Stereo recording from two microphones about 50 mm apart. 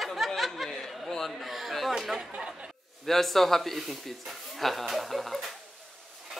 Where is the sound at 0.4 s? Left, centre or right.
Centre.